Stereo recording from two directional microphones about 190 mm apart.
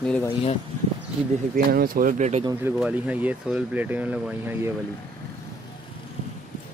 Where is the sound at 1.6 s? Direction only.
50° right (ahead or behind).